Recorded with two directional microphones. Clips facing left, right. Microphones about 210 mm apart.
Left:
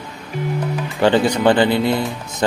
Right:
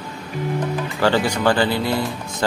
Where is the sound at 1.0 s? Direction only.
20° left (ahead or behind).